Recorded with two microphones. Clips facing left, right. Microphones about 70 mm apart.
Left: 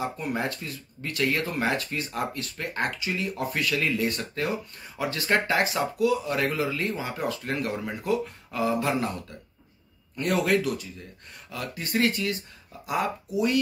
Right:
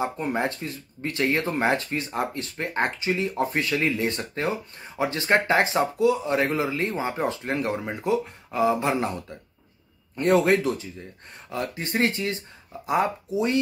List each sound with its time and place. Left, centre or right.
0.0 s speech: right